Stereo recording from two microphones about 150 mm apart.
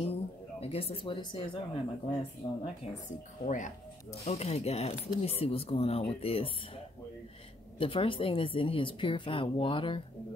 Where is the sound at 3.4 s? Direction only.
60° left (ahead or behind).